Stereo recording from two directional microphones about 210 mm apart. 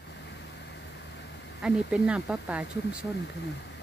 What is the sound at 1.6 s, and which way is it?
Speech, 5° right (ahead or behind).